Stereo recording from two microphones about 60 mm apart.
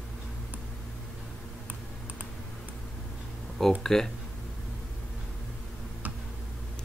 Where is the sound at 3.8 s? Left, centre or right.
Centre.